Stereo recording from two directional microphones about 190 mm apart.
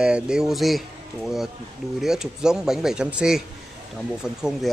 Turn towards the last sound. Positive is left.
turn(degrees=0)  # may be behind; listen again after turning